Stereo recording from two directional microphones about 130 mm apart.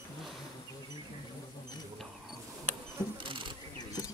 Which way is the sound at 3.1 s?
40° right (ahead or behind).